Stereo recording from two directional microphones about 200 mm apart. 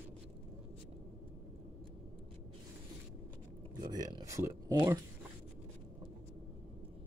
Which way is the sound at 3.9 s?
20° right (ahead or behind).